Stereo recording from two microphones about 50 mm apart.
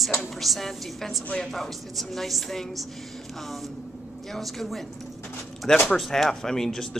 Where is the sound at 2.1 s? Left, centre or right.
Centre.